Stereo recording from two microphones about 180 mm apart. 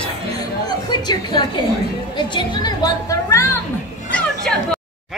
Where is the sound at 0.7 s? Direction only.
25° left (ahead or behind).